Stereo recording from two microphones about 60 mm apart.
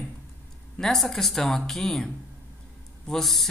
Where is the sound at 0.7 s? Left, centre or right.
Centre.